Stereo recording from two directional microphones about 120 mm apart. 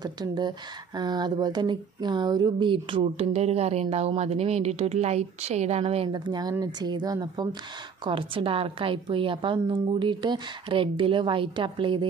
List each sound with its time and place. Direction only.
0.0 s speech: 35° right (ahead or behind); by 6.0 s 60° right (ahead or behind)
6.1 s a woman's voice: 35° right (ahead or behind)
8.0 s speech: 45° right (ahead or behind)